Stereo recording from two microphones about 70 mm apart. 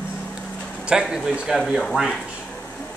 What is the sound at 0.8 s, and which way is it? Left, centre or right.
Speech, centre.